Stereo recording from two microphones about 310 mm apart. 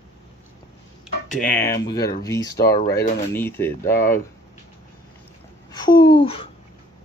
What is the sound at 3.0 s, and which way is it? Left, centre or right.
Speech, centre.